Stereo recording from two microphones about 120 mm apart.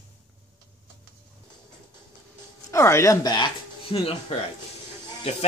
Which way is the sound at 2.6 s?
25° left (ahead or behind).